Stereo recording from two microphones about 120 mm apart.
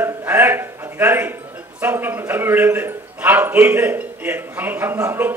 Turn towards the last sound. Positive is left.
turn(degrees=-20)  # may be behind; listen again after turning